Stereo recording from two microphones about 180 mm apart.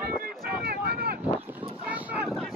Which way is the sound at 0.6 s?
60° right (ahead or behind).